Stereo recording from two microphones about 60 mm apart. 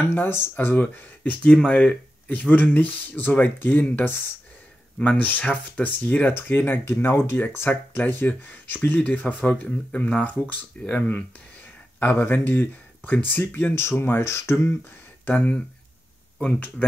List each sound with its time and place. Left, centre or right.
0.0 s speech: left
0.7 s speech: left
1.5 s speech: centre; by 3.8 s left
5.1 s speech: left
14.2 s speech: left
15.2 s speech: left